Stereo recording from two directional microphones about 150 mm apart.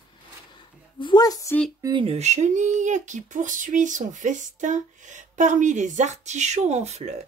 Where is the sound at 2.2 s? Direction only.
50° right (ahead or behind).